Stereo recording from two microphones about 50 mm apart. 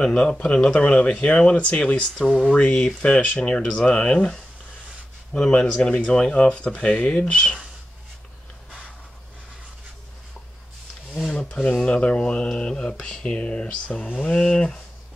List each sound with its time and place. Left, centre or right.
0.0 s speech: centre
2.2 s speech: centre
2.5 s speech: left
11.3 s rub: left
11.8 s speech: left